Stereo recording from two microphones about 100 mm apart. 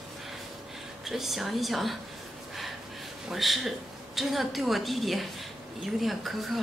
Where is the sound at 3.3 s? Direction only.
Centre (ahead or behind).